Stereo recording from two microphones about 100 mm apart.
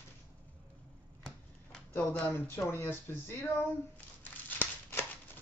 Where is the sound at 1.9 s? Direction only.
15° left (ahead or behind).